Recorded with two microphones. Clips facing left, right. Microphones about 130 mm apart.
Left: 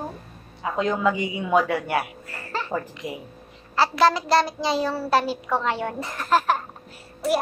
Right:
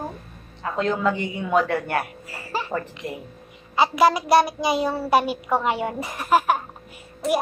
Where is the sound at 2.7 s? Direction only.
5° left (ahead or behind).